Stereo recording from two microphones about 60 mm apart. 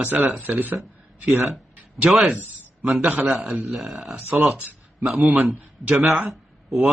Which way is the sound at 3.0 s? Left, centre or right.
Right.